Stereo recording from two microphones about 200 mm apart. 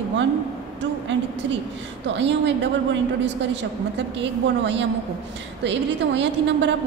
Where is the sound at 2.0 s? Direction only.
60° right (ahead or behind).